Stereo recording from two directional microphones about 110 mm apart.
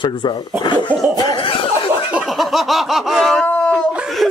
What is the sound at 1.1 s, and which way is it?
Chuckle, 35° left (ahead or behind).